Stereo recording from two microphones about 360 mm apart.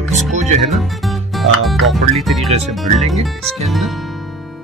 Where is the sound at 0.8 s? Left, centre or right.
Centre.